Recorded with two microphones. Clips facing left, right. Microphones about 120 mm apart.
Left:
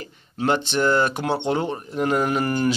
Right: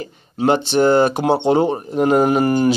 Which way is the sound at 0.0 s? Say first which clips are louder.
Right 6 dB; 20° right (ahead or behind).